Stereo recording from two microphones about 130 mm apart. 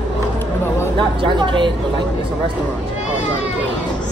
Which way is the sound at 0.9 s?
40° right (ahead or behind).